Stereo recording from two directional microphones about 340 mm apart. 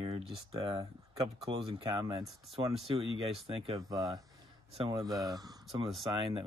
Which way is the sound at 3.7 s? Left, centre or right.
Centre.